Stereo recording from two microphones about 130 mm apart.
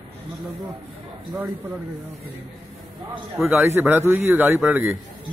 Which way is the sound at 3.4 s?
20° right (ahead or behind).